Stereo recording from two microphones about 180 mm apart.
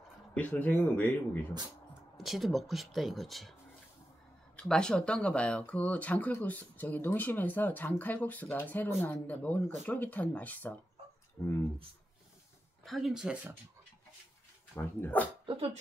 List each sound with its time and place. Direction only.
0.3 s speech: 10° left (ahead or behind)
2.1 s speech: centre (ahead or behind)
4.6 s speech: 5° left (ahead or behind)
12.8 s speech: centre (ahead or behind)
14.8 s speech: 10° left (ahead or behind)
15.4 s speech: 35° right (ahead or behind)